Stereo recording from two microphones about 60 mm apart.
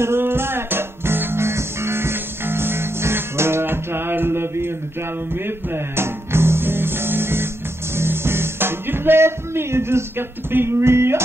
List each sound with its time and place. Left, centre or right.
0.0 s music: right